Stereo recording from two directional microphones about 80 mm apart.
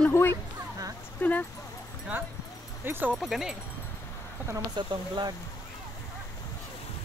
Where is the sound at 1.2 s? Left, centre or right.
Left.